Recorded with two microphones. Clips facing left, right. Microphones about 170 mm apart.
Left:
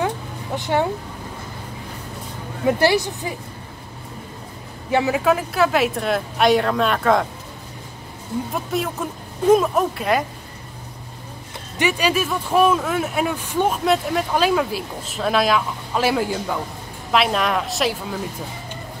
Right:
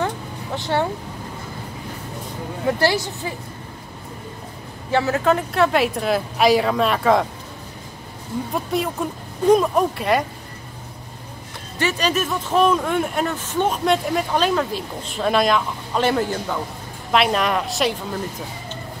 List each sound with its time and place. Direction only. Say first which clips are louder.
0.6 s speech: left 1 dB; 15° left (ahead or behind)
2.8 s speech: left 2 dB; 15° left (ahead or behind)
4.9 s speech: even; 15° left (ahead or behind)
8.5 s speech: right 3 dB; centre (ahead or behind)
11.8 s speech: left 1 dB; 10° left (ahead or behind)